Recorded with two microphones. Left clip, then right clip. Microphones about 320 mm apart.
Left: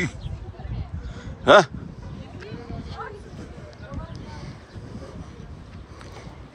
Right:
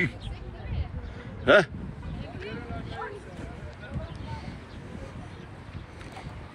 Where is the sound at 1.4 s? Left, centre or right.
Centre.